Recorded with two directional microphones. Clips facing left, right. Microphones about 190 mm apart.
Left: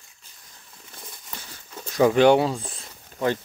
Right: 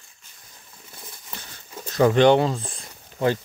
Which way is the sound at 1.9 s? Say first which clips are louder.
Even; 5° left (ahead or behind).